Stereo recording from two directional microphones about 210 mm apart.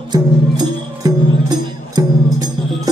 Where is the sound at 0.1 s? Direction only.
20° right (ahead or behind).